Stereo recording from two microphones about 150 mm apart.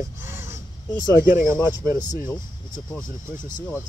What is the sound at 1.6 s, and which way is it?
Speech, 20° right (ahead or behind).